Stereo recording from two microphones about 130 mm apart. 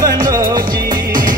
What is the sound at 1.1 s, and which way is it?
Music, 90° right.